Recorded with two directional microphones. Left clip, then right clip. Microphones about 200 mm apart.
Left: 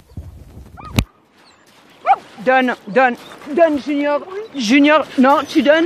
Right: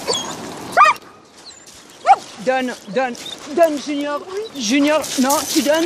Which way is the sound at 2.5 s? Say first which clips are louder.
Left 5 dB; 35° left (ahead or behind).